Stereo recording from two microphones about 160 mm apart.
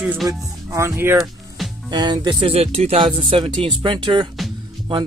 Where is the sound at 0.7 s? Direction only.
15° right (ahead or behind).